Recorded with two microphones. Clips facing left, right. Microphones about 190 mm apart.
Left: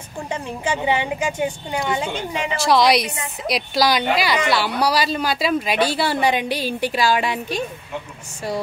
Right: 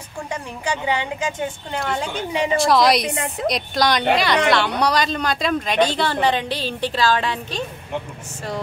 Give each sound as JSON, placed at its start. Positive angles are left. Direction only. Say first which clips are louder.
{"t": 0.3, "sound": "a woman's voice", "louder": "left 2 dB", "side_deg": 20}